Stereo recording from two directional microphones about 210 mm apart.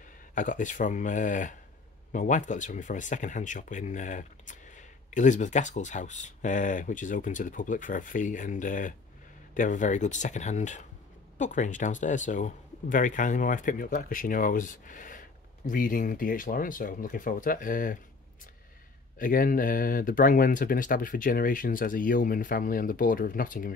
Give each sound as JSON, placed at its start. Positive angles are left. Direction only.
{"t": 0.3, "sound": "speech", "side_deg": 40}
{"t": 19.1, "sound": "speech", "side_deg": 40}